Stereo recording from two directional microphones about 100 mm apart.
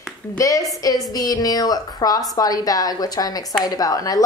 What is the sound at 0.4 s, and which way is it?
A woman's voice, 35° left (ahead or behind).